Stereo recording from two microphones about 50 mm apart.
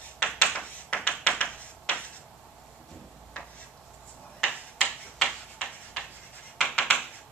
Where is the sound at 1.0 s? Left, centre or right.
Left.